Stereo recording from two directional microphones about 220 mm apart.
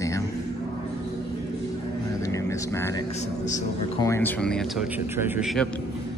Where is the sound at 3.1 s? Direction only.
30° left (ahead or behind).